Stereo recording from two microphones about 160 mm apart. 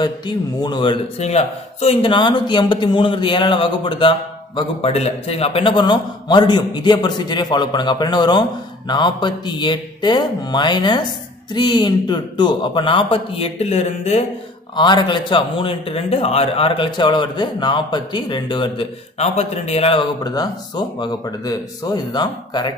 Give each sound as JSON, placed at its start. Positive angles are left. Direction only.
{"t": 0.0, "sound": "speech", "side_deg": 25}
{"t": 1.2, "sound": "a man's voice", "side_deg": 40}
{"t": 14.8, "sound": "speech", "side_deg": 30}
{"t": 19.1, "sound": "speech", "side_deg": 40}